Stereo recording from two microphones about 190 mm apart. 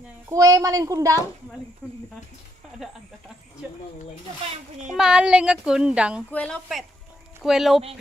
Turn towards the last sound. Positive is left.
turn(degrees=0)  # may be behind; listen again after turning